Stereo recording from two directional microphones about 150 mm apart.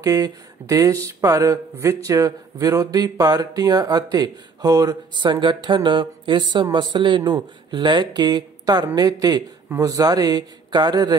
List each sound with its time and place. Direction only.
0.0 s speech: 20° right (ahead or behind)